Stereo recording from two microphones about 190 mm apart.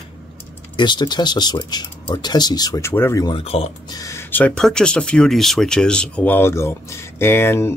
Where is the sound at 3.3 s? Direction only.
30° left (ahead or behind).